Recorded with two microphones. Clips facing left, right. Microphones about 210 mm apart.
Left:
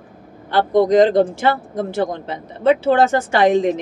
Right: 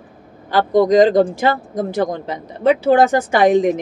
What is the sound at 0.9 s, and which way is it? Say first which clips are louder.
Speech: right 1 dB; 15° right (ahead or behind).